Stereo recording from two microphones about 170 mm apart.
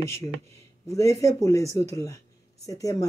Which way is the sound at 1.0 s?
20° left (ahead or behind).